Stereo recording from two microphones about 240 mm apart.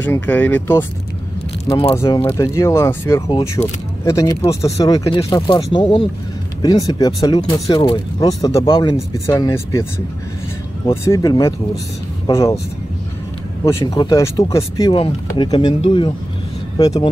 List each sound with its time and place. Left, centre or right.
0.0 s speech: centre
1.7 s speech: centre
11.1 s speech: centre
13.7 s speech: centre